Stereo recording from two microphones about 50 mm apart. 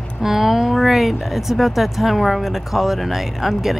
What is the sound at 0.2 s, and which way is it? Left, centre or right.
Speech, centre.